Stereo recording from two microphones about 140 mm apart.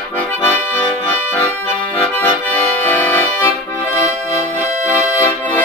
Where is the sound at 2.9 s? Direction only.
15° left (ahead or behind).